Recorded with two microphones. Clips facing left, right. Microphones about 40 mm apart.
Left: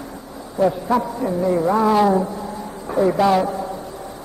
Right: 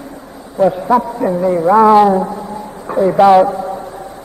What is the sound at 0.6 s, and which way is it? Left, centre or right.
Speech, right.